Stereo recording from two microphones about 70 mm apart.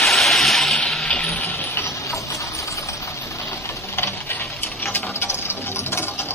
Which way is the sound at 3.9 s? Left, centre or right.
Left.